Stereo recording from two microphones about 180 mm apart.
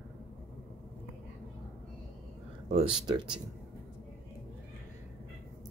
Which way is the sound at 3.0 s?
25° right (ahead or behind).